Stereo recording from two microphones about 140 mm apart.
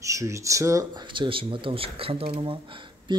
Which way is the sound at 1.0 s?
35° right (ahead or behind).